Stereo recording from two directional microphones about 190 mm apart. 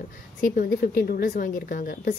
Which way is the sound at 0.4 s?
45° left (ahead or behind).